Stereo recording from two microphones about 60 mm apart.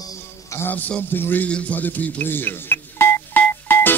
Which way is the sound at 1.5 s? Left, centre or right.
Left.